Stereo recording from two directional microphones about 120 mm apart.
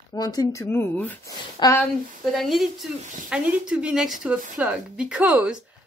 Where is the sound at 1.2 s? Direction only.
25° left (ahead or behind).